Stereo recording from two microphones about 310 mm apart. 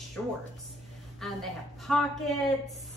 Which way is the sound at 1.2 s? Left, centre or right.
Centre.